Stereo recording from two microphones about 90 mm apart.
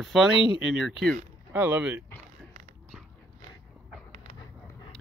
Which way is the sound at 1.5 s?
20° right (ahead or behind).